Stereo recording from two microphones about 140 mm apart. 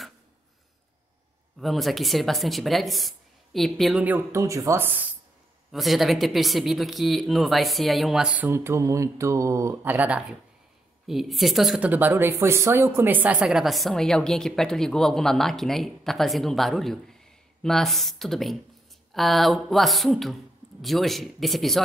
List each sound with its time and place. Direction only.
1.6 s speech: centre (ahead or behind)
4.0 s speech: 15° right (ahead or behind)
5.7 s speech: centre (ahead or behind)
8.5 s speech: 20° right (ahead or behind); by 11.9 s centre (ahead or behind)
11.9 s speech: 15° right (ahead or behind); by 21.8 s centre (ahead or behind)